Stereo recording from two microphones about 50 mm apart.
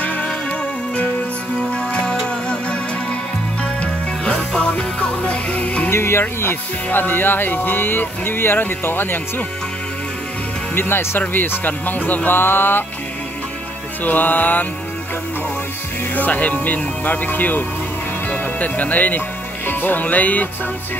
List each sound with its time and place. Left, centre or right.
0.0 s music: left
1.7 s music: centre
5.9 s speech: left
10.7 s speech: left
12.3 s speech: left
14.0 s speech: left
16.2 s speech: left